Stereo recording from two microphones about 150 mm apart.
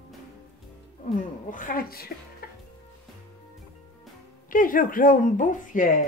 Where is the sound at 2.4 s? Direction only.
80° left.